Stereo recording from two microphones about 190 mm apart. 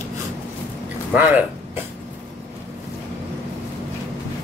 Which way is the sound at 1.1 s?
10° right (ahead or behind).